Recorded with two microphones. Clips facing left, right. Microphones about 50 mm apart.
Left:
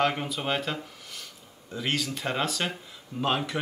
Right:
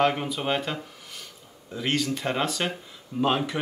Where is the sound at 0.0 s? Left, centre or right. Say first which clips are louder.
Right 3 dB; centre.